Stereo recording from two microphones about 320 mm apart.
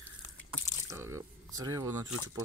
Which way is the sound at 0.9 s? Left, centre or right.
Centre.